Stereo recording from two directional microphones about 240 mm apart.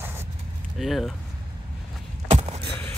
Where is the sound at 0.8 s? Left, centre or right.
Centre.